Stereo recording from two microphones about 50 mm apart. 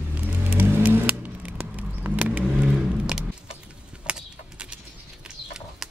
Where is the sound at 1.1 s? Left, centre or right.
Right.